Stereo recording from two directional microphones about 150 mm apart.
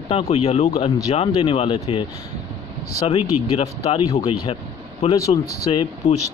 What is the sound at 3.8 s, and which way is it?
Speech, 45° left (ahead or behind).